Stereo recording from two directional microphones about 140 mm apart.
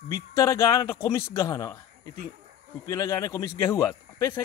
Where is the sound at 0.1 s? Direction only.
20° left (ahead or behind).